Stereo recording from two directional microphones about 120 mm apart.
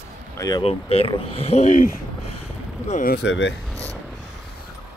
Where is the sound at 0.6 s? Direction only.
55° left (ahead or behind).